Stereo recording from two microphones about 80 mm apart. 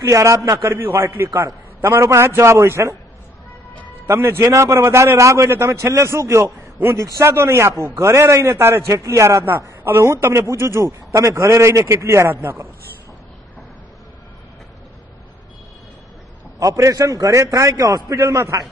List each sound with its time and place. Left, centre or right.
0.0 s a man's voice: right
4.1 s a man's voice: right
16.5 s a man's voice: right